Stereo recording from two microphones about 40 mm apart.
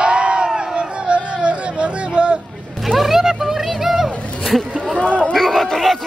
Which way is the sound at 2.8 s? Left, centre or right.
Centre.